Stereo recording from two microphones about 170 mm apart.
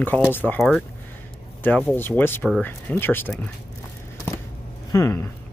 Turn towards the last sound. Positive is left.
turn(degrees=15)  # may be behind; listen again after turning